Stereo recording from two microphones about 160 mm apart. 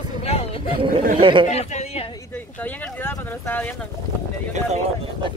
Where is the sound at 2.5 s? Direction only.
10° left (ahead or behind).